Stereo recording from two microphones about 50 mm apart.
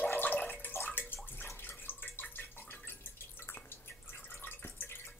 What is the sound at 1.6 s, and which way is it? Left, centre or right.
Drip, left.